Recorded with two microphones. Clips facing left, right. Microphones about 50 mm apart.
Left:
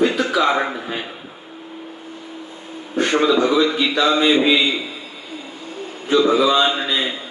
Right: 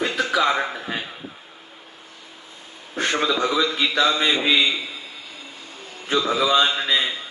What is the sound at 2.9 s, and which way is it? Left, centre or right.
A man's voice, left.